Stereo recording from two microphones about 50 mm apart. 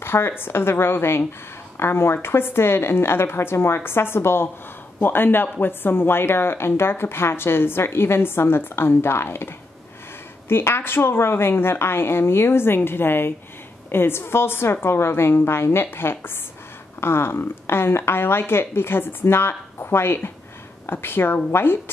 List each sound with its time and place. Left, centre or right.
0.0 s a woman's voice: left
10.5 s a woman's voice: left